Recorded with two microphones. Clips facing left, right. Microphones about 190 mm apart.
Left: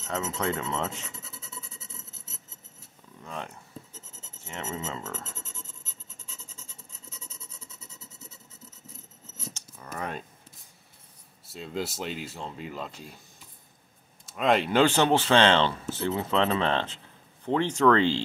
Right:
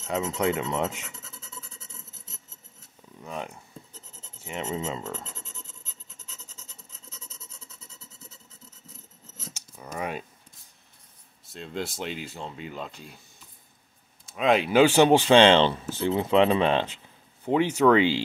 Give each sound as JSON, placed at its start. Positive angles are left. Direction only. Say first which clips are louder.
{"t": 0.0, "sound": "speech", "louder": "right 4 dB", "side_deg": -15}
{"t": 1.2, "sound": "a sound", "louder": "left 1 dB", "side_deg": 10}
{"t": 3.3, "sound": "speech", "louder": "right 3 dB", "side_deg": -10}
{"t": 5.4, "sound": "a sound", "louder": "left 1 dB", "side_deg": 45}
{"t": 9.5, "sound": "scissors", "louder": "right 1 dB", "side_deg": -10}
{"t": 9.9, "sound": "speech", "louder": "right 3 dB", "side_deg": -10}
{"t": 11.4, "sound": "speech", "louder": "even", "side_deg": 5}
{"t": 14.2, "sound": "speech", "louder": "right 1 dB", "side_deg": 0}